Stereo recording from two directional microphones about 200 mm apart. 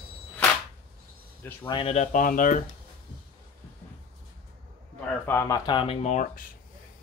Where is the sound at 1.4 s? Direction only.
25° left (ahead or behind); by 2.6 s 40° left (ahead or behind).